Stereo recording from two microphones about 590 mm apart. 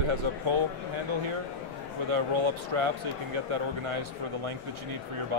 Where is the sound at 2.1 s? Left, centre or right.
Right.